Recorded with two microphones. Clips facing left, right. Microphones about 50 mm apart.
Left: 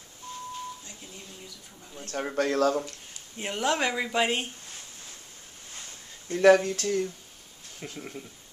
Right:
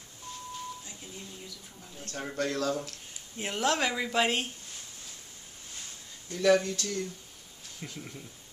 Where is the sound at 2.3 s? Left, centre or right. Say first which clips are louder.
Left 6 dB; left.